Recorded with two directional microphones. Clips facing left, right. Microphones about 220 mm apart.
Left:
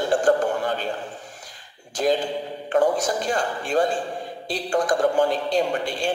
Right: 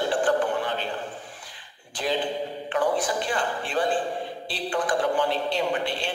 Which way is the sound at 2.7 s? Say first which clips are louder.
Left 5 dB; 45° left (ahead or behind).